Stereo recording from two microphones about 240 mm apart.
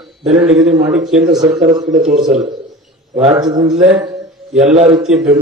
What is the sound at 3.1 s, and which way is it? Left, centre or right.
A man's voice, centre.